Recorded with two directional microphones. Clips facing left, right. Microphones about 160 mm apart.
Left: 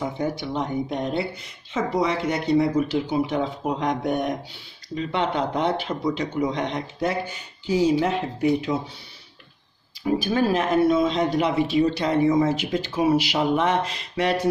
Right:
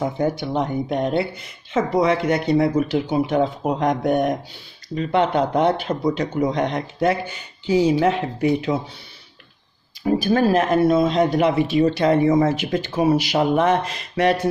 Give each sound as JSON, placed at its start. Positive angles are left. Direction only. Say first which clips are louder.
{"t": 0.0, "sound": "speech", "louder": "right 5 dB", "side_deg": -50}
{"t": 10.0, "sound": "speech", "louder": "right 4 dB", "side_deg": -45}